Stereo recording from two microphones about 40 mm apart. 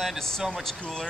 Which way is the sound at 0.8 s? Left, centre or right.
Centre.